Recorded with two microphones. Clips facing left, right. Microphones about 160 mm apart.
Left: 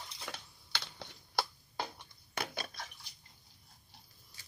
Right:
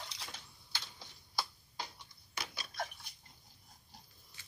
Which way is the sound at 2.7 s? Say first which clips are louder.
Right 7 dB; 55° right (ahead or behind).